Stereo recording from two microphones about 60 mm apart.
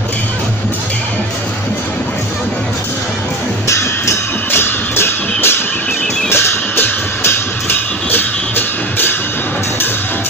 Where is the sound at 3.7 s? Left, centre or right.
Left.